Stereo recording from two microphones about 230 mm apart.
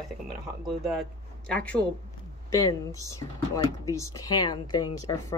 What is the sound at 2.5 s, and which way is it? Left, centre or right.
Speech, centre.